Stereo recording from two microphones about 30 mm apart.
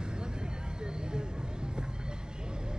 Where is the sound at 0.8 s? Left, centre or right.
Right.